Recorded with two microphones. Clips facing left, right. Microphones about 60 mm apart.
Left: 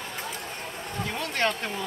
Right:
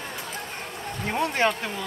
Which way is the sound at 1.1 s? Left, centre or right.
Centre.